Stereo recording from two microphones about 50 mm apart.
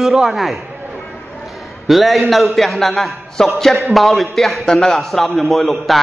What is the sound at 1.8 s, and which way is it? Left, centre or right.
A man's voice, centre.